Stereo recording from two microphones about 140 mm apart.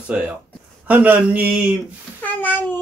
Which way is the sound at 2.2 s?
15° left (ahead or behind).